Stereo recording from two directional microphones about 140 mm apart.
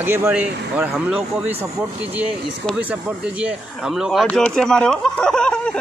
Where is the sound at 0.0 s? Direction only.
15° right (ahead or behind).